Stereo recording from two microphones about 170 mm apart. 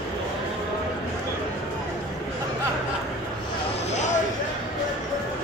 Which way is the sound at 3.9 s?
45° left (ahead or behind).